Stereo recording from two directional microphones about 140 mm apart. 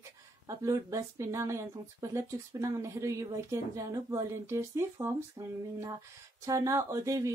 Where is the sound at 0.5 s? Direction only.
25° right (ahead or behind).